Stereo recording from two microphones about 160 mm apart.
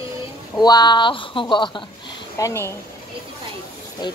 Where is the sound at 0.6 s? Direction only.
25° left (ahead or behind).